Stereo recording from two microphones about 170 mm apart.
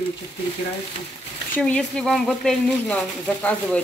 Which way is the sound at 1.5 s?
5° left (ahead or behind).